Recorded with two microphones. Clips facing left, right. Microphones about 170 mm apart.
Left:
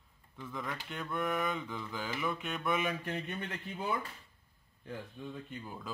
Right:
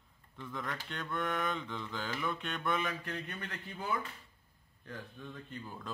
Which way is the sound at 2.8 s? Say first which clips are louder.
Left 3 dB; 20° left (ahead or behind).